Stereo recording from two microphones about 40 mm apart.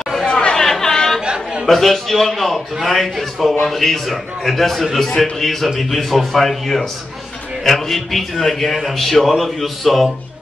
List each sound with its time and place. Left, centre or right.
0.3 s chatter: left
0.7 s chatter: centre
1.2 s chatter: right
1.7 s a man's voice: centre